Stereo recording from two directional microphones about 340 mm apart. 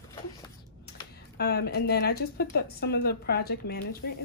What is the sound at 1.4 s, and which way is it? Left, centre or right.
Speech, left.